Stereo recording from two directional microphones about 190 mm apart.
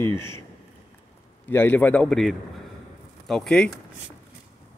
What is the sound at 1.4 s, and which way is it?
A man's voice, 10° left (ahead or behind).